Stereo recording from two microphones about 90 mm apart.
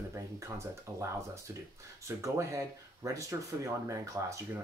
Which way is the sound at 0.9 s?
40° right (ahead or behind).